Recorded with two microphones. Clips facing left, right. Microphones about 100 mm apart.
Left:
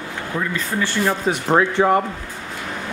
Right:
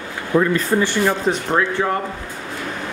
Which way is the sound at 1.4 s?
20° left (ahead or behind).